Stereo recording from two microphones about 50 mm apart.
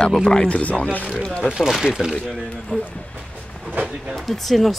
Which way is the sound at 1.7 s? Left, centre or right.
Centre.